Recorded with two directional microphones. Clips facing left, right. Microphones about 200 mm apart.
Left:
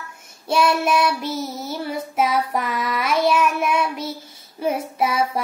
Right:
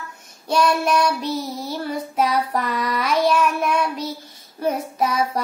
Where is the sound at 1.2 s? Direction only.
25° left (ahead or behind).